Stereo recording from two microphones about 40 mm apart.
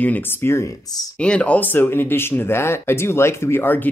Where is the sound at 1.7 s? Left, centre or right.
Left.